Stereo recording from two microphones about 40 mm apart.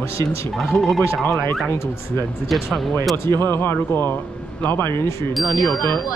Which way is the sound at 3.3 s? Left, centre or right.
Left.